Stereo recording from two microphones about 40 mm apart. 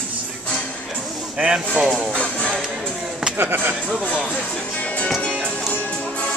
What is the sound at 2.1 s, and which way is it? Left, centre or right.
Music, left.